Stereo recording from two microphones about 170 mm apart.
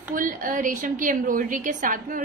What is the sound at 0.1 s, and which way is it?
A woman's voice, 50° right (ahead or behind).